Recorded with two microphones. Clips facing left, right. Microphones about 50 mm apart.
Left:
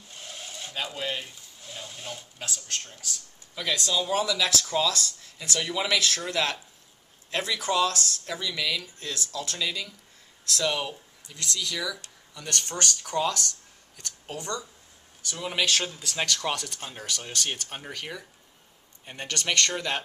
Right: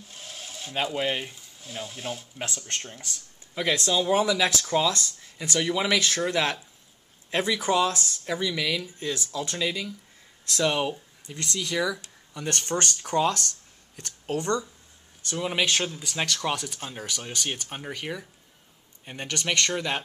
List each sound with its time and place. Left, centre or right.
0.1 s a sound: centre
0.7 s speech: right
1.8 s speech: centre
2.3 s speech: right; by 11.0 s centre
11.2 s speech: right
15.4 s speech: centre